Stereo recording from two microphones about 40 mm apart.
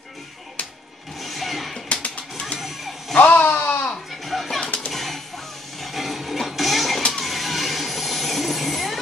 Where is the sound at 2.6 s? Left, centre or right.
Centre.